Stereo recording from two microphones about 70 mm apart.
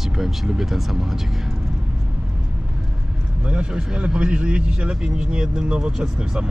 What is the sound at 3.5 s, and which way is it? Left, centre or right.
A man's voice, centre.